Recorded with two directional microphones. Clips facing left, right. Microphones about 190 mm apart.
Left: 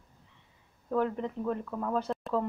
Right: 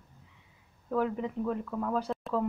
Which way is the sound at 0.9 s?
5° right (ahead or behind).